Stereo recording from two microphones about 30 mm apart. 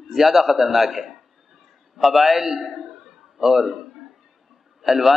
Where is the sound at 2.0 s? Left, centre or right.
Centre.